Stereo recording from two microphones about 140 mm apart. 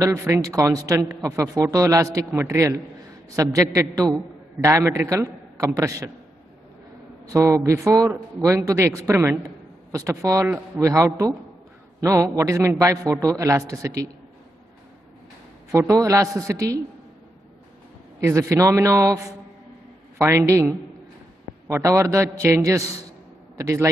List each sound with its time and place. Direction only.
0.0 s a man's voice: 20° right (ahead or behind)
7.3 s a man's voice: 20° right (ahead or behind)
15.9 s a man's voice: 20° right (ahead or behind)
18.2 s a man's voice: 20° right (ahead or behind)